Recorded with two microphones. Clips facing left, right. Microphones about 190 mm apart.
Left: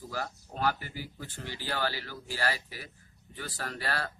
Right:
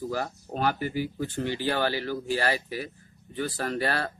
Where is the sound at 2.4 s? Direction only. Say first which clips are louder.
Right 3 dB; 60° right (ahead or behind).